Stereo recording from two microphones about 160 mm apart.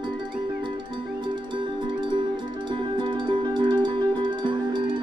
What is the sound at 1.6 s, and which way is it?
Music, 30° right (ahead or behind).